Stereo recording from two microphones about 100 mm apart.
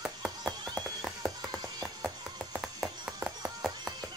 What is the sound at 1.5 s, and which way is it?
Music, 40° right (ahead or behind).